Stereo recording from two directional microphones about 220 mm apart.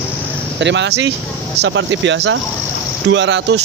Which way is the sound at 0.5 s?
55° right (ahead or behind).